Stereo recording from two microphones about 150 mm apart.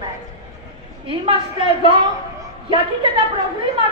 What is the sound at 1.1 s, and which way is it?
Speech, 35° right (ahead or behind).